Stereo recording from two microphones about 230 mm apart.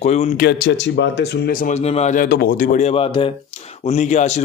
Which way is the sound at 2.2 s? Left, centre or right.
Left.